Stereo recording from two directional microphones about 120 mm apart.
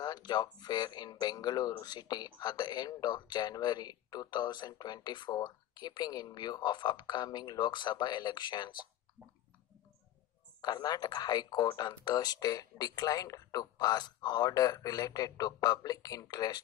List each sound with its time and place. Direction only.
0.0 s speech: 35° left (ahead or behind)
10.6 s speech: 35° left (ahead or behind)